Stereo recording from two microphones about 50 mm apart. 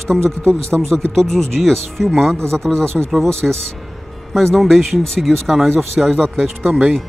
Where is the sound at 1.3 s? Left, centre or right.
Centre.